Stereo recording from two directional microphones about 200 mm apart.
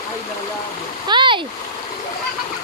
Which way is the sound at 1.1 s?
25° right (ahead or behind).